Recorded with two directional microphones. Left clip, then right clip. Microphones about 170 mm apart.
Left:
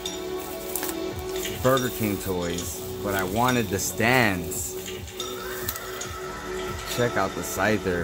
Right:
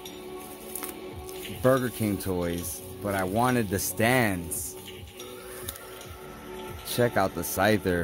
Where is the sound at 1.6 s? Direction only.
45° right (ahead or behind).